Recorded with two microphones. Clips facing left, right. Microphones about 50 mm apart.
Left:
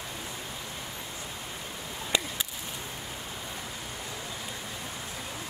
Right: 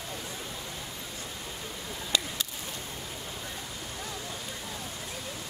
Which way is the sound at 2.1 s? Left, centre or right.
Left.